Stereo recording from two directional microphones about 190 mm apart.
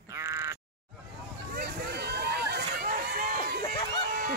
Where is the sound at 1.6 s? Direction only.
55° right (ahead or behind).